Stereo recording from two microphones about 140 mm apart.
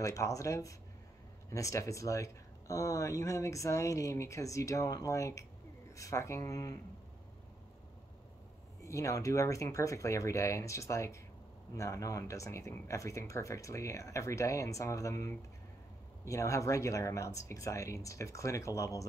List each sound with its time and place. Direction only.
0.0 s speech: 20° left (ahead or behind)
8.8 s speech: 20° left (ahead or behind)